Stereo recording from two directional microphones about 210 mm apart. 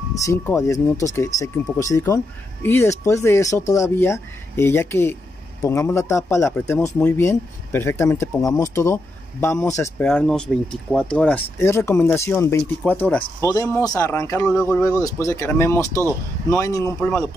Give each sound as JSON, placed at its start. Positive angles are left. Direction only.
{"t": 0.1, "sound": "speech", "side_deg": 15}
{"t": 15.9, "sound": "speech", "side_deg": -15}
{"t": 16.4, "sound": "speech", "side_deg": 15}